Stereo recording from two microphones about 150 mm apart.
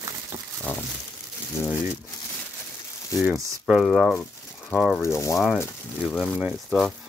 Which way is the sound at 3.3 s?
Centre (ahead or behind).